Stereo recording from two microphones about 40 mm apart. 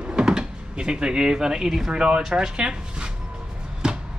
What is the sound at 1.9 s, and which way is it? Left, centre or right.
Speech, right.